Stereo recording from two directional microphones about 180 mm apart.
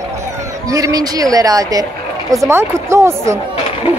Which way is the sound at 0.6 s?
20° right (ahead or behind).